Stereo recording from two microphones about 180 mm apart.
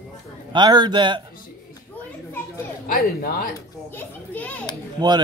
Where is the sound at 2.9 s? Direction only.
60° left (ahead or behind).